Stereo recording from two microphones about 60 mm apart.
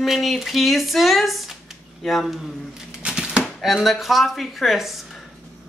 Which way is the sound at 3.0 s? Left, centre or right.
Centre.